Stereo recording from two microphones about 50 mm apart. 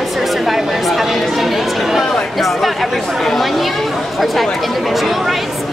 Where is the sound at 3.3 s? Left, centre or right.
Centre.